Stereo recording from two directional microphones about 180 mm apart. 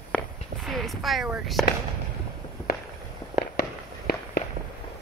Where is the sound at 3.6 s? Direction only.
60° left (ahead or behind).